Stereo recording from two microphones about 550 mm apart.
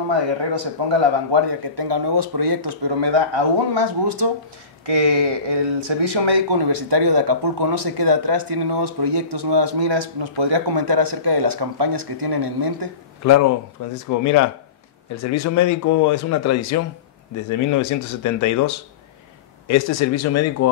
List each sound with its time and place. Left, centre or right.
0.1 s speech: right
4.8 s speech: right
13.2 s speech: left